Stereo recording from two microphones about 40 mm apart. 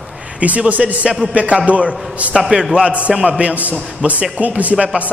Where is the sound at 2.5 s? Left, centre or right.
Right.